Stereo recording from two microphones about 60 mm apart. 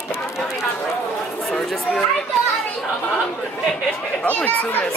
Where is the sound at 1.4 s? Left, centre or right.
Centre.